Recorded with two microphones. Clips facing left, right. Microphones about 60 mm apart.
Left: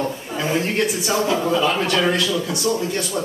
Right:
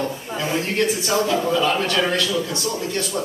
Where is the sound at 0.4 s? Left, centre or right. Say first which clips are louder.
Left 1 dB; centre.